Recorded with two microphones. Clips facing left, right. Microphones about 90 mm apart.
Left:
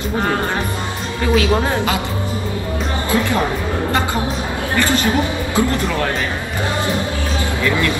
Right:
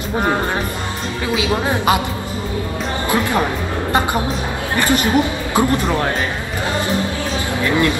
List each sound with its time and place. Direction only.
1.3 s speech: 15° right (ahead or behind)
4.7 s speech: 20° right (ahead or behind)